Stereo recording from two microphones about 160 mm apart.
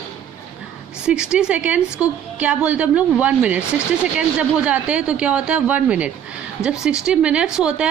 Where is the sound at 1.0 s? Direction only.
5° right (ahead or behind).